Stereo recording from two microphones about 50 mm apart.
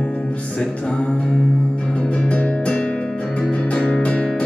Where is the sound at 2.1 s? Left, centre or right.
Left.